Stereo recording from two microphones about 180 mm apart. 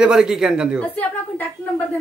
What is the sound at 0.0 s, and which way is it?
Speech, 5° right (ahead or behind).